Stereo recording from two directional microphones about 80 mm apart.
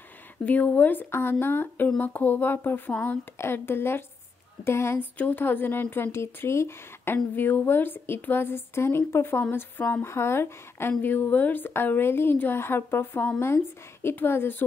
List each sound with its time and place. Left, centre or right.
0.5 s a woman's voice: left
5.1 s a woman's voice: left